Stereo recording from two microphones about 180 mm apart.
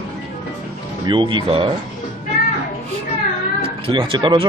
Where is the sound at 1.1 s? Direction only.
30° right (ahead or behind).